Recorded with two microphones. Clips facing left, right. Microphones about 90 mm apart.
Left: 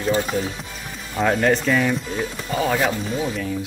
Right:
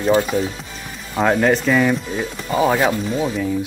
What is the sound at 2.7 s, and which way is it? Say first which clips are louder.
Speech: right 3 dB; 35° right (ahead or behind).